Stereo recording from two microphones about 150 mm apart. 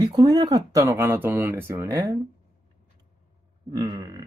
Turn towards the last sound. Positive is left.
turn(degrees=-25)  # may be behind; listen again after turning